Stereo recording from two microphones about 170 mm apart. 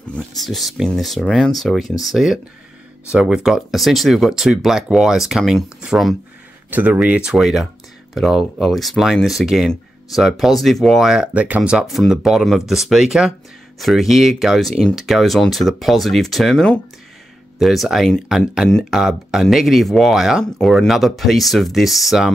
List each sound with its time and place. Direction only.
0.0 s speech: 5° left (ahead or behind)